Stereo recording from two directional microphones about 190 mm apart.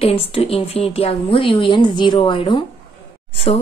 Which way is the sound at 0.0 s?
30° left (ahead or behind).